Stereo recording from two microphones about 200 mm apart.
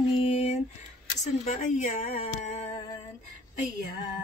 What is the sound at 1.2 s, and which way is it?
Speech, 35° left (ahead or behind).